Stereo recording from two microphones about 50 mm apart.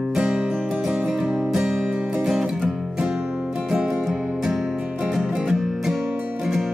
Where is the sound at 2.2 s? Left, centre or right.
Centre.